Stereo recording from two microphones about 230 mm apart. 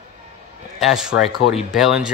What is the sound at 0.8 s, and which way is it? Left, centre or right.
Speech, centre.